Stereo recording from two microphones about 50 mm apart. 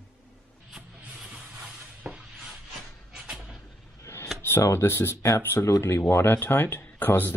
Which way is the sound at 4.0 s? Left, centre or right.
Left.